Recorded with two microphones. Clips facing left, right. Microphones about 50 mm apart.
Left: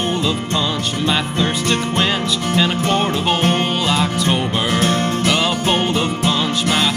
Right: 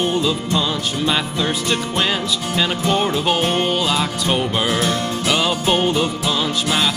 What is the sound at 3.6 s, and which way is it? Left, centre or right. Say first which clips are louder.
Music: left 1 dB; centre.